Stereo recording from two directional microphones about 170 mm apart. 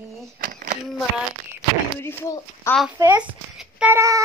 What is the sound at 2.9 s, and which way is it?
Speech, 20° right (ahead or behind).